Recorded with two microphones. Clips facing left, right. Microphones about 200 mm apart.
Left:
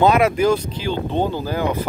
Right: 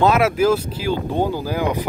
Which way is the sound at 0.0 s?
5° right (ahead or behind).